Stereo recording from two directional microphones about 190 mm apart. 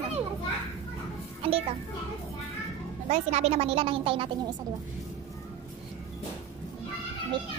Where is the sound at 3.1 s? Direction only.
35° right (ahead or behind).